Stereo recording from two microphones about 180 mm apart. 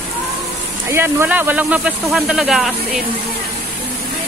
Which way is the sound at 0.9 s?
15° right (ahead or behind).